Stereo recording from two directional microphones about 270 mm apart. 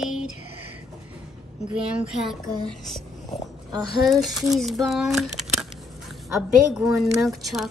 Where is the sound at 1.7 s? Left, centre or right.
Centre.